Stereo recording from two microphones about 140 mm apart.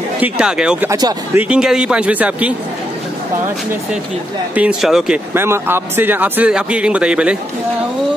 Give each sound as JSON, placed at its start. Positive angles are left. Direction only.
{"t": 0.2, "sound": "speech", "side_deg": -5}
{"t": 0.8, "sound": "speech", "side_deg": -30}
{"t": 1.3, "sound": "a man's voice", "side_deg": -5}
{"t": 4.6, "sound": "speech", "side_deg": -5}
{"t": 5.3, "sound": "a man's voice", "side_deg": -15}